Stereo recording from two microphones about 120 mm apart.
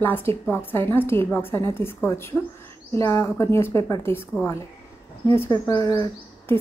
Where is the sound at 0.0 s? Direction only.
20° left (ahead or behind).